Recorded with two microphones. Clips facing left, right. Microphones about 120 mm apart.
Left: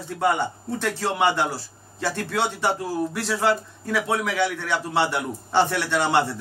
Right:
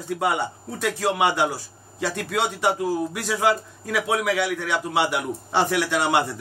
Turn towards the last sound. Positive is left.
turn(degrees=-15)  # may be behind; listen again after turning